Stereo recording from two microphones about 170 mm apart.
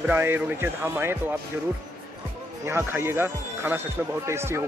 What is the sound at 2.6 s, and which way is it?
Speech, 15° right (ahead or behind).